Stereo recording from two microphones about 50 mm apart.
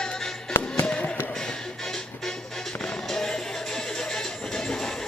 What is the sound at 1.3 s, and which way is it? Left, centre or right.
Music, centre.